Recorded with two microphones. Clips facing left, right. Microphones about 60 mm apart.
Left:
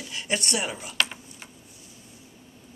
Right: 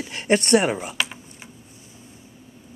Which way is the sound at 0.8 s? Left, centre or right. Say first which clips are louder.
Right 1 dB; centre.